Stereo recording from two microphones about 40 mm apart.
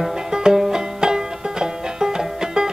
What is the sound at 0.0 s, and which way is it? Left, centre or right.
Music, centre.